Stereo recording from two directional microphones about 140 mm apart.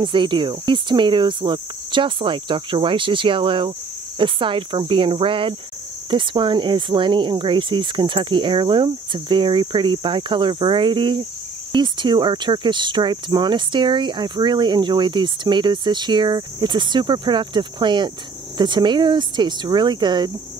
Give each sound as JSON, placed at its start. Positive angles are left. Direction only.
{"t": 0.0, "sound": "speech", "side_deg": -35}